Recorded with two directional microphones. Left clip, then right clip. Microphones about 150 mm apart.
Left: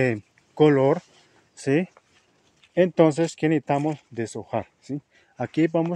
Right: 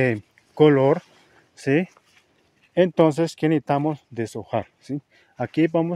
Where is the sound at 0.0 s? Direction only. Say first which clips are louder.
Right 2 dB; 30° right (ahead or behind).